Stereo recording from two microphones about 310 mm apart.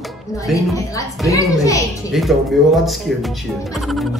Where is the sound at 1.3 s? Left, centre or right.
Centre.